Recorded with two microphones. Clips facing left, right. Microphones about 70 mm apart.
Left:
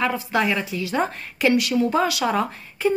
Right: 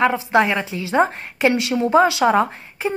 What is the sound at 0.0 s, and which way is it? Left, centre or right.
A woman's voice, right.